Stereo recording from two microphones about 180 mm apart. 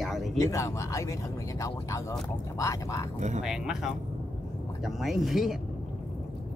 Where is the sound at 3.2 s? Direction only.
40° right (ahead or behind).